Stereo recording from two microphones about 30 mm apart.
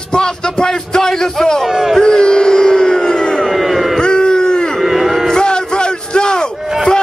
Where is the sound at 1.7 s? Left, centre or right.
Centre.